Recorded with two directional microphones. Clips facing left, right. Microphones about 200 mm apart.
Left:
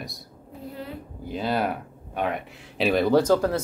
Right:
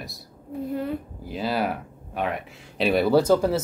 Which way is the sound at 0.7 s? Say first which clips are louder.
Right 9 dB; 50° right (ahead or behind).